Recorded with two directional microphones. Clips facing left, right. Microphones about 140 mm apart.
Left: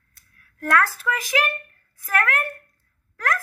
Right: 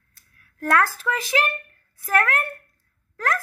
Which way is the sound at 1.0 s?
5° right (ahead or behind).